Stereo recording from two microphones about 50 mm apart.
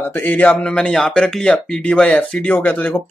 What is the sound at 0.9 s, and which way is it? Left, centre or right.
Speech, centre.